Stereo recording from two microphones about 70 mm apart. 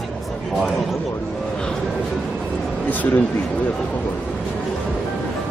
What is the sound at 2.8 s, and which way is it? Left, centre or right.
Speech, left.